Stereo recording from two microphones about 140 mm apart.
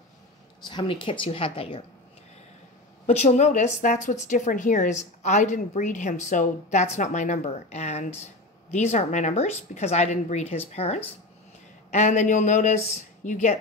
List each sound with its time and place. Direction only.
0.7 s a woman's voice: 35° left (ahead or behind)
3.1 s speech: 55° left (ahead or behind)